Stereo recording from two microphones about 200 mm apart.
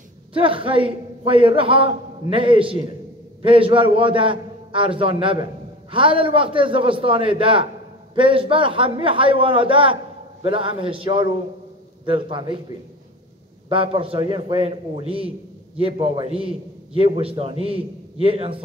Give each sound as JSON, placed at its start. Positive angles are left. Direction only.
{"t": 0.3, "sound": "a man's voice", "side_deg": -25}